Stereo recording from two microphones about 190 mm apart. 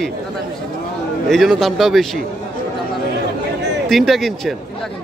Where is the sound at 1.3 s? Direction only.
Centre (ahead or behind).